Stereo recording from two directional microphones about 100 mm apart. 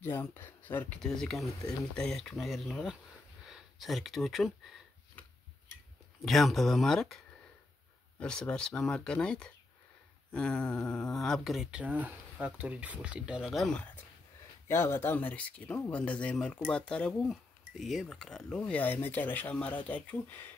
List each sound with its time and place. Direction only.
0.0 s speech: 25° left (ahead or behind)
1.0 s speech: 5° left (ahead or behind)
6.2 s speech: centre (ahead or behind)
8.2 s speech: 10° left (ahead or behind)
14.7 s speech: 25° left (ahead or behind)